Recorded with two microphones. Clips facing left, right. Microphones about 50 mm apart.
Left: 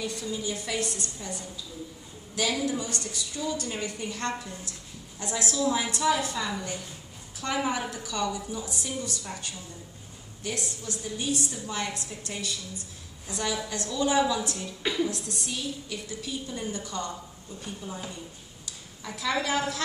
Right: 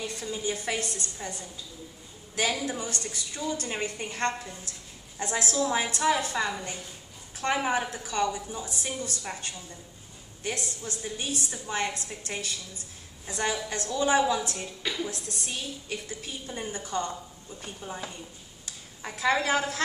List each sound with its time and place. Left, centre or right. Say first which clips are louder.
0.0 s a woman's voice: even; right
2.6 s a woman's voice: left 2 dB; right
14.8 s a woman's voice: left 5 dB; centre
15.0 s a woman's voice: left 3 dB; right
18.7 s a sound: even; right
19.4 s a woman's voice: right 1 dB; right